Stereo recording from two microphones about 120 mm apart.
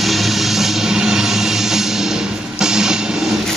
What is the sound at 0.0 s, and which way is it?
Music, centre (ahead or behind).